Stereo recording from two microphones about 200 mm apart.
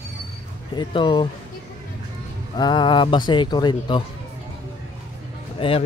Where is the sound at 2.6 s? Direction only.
20° left (ahead or behind).